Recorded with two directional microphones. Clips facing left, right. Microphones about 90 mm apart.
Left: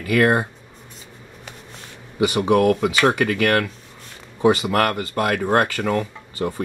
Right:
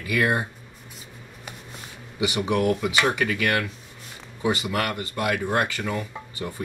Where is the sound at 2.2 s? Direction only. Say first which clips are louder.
Left 7 dB; 40° left (ahead or behind).